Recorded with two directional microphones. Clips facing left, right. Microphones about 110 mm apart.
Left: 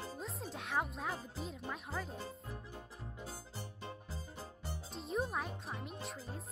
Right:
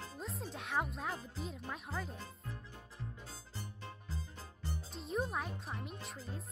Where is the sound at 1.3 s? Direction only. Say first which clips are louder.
Left 1 dB; centre (ahead or behind).